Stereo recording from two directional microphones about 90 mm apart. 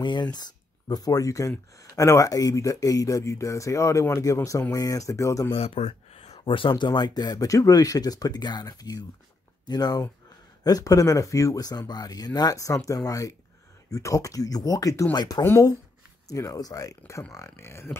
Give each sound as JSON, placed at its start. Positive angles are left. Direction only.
{"t": 0.0, "sound": "speech", "side_deg": 55}
{"t": 6.4, "sound": "speech", "side_deg": 70}
{"t": 15.1, "sound": "speech", "side_deg": 50}
{"t": 16.3, "sound": "speech", "side_deg": 40}